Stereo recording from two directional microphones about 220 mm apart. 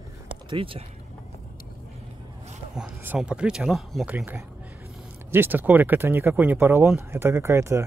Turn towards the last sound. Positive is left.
turn(degrees=-10)  # may be behind; listen again after turning